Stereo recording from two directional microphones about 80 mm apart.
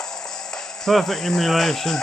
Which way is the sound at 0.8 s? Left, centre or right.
Centre.